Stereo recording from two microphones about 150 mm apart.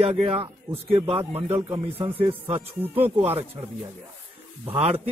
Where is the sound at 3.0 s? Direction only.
40° right (ahead or behind).